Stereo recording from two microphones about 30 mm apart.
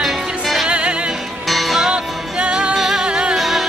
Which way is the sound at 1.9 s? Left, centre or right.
Right.